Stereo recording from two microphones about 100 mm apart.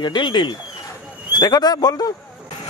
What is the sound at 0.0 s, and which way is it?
Speech, 50° left (ahead or behind).